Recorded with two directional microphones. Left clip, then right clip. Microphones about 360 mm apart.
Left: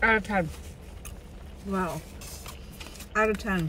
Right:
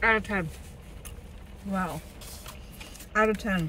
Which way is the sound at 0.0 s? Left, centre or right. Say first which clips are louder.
Left 1 dB; centre.